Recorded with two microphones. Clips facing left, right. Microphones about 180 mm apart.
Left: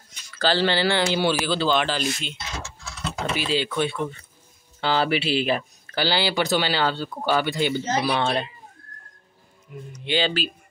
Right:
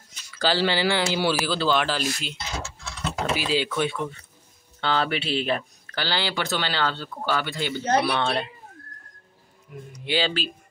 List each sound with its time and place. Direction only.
0.4 s speech: 10° right (ahead or behind)
3.3 s speech: 5° right (ahead or behind); by 7.8 s 15° left (ahead or behind)
7.8 s speech: 60° right (ahead or behind)
8.2 s speech: centre (ahead or behind)
10.0 s speech: 5° right (ahead or behind)